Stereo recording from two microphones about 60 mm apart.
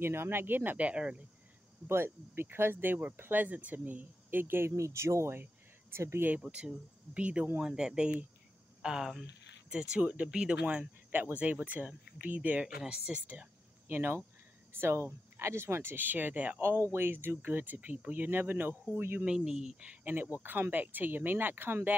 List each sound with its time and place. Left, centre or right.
0.0 s speech: right
0.6 s speech: right
1.9 s speech: right
4.8 s speech: right
5.4 s a sound: right
6.4 s speech: centre
7.5 s speech: centre
12.6 s speech: centre
13.8 s speech: right
16.6 s speech: right
19.2 s speech: centre
20.4 s speech: right